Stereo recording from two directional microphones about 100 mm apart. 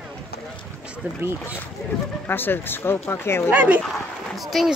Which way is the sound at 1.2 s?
25° right (ahead or behind).